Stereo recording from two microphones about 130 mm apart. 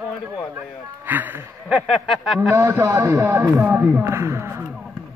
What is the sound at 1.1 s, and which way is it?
Speech, 15° right (ahead or behind).